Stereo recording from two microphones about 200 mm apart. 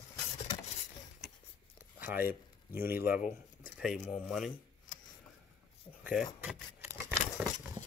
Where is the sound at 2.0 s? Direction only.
10° right (ahead or behind).